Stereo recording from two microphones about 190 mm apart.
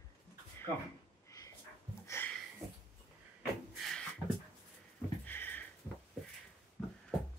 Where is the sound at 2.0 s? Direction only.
10° left (ahead or behind).